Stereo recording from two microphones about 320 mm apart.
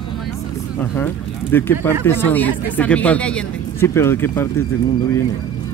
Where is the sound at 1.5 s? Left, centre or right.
Centre.